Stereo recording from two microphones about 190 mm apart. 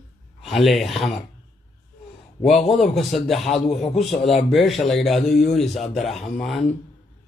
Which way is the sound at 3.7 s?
35° left (ahead or behind).